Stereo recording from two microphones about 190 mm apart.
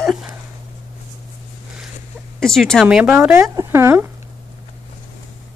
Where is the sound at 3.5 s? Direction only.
15° right (ahead or behind).